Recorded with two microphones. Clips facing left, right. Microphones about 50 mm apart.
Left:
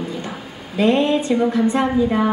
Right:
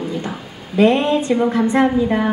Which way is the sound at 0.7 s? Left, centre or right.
Right.